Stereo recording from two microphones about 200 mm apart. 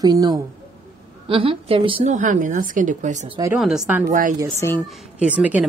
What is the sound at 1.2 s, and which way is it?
A woman's voice, 25° right (ahead or behind).